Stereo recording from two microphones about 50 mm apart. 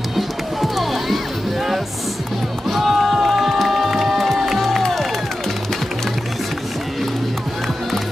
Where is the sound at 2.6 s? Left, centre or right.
Centre.